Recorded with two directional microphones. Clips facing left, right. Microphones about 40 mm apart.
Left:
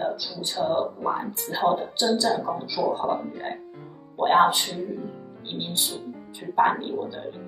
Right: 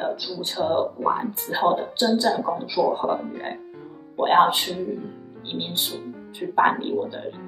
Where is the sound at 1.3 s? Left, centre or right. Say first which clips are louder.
Right 2 dB; right.